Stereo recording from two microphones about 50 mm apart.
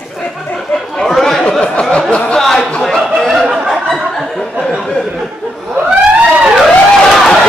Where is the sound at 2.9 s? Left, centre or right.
Centre.